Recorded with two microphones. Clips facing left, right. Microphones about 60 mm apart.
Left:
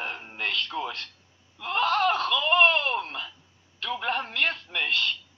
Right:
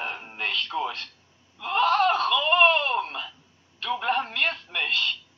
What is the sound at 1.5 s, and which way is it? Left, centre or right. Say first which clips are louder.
Wail: right 3 dB; centre.